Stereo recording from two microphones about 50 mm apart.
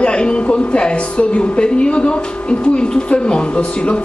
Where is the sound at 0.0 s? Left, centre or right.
Centre.